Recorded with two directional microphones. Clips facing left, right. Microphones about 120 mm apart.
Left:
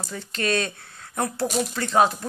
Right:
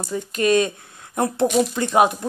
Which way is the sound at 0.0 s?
15° right (ahead or behind).